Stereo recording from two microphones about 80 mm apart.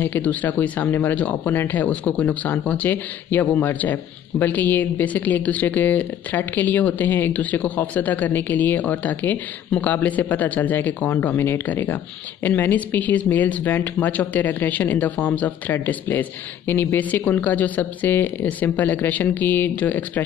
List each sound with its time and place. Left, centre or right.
0.0 s speech: left